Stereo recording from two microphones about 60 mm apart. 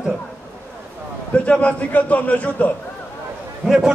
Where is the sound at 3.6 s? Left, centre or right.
Centre.